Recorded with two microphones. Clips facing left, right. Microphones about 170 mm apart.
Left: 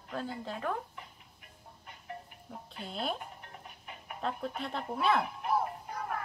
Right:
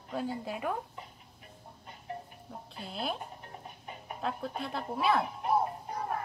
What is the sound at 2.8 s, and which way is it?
Speech, 5° right (ahead or behind).